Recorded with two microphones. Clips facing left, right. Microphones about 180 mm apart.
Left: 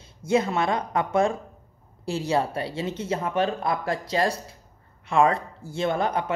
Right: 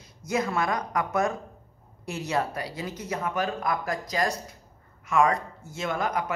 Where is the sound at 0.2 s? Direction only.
25° left (ahead or behind).